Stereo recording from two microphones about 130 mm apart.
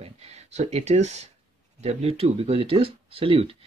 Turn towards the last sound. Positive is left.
turn(degrees=-45)  # may be behind; listen again after turning